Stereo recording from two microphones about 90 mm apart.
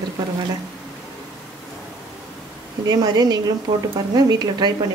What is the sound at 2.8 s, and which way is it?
Speech, 45° right (ahead or behind).